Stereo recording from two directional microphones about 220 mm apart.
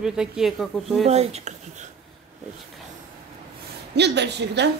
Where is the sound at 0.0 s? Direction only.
Centre (ahead or behind).